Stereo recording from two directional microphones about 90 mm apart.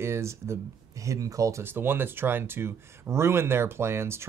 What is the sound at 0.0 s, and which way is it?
Speech, 30° right (ahead or behind).